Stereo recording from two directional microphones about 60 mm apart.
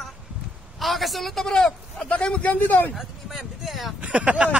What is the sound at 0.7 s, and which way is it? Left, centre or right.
Speech, centre.